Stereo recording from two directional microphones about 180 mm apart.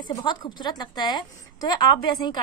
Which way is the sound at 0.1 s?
25° left (ahead or behind).